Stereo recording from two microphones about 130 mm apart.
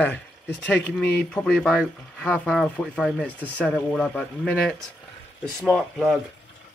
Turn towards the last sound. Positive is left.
turn(degrees=0)  # may be behind; listen again after turning